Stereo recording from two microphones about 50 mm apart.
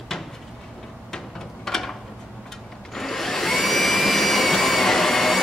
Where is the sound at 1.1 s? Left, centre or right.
Centre.